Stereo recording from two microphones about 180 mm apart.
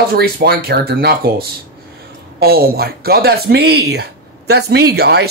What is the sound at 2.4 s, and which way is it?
Speech, 60° right (ahead or behind).